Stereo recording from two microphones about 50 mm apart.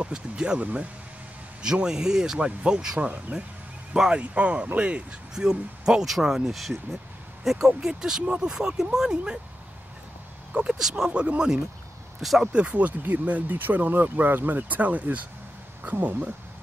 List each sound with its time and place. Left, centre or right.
0.0 s speech: right
1.6 s speech: centre
3.1 s speech: right
5.3 s speech: centre
10.5 s speech: right
10.8 s speech: centre
11.1 s speech: right
12.2 s speech: centre
12.5 s speech: right